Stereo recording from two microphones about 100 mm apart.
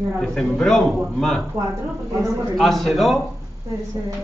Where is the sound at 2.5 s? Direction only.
Centre (ahead or behind).